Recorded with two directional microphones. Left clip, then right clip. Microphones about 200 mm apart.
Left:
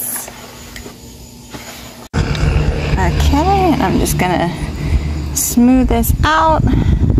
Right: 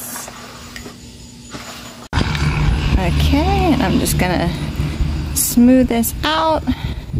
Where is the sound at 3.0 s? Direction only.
5° right (ahead or behind).